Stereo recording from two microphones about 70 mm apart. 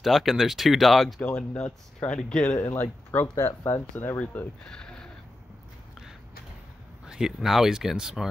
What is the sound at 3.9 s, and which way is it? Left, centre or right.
Speech, left.